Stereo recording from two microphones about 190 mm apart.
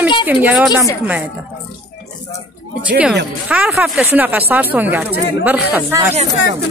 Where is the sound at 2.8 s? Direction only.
5° right (ahead or behind).